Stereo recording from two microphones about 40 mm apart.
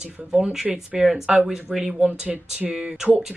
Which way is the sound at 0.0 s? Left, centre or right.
Centre.